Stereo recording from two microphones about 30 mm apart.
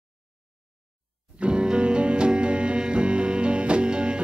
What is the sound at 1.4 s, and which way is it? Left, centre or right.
Music, right.